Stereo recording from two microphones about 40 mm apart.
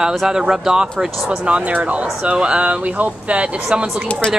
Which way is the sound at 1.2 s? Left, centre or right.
Right.